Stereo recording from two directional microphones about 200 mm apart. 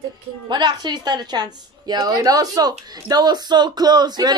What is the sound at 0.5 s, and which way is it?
Speech, 20° right (ahead or behind).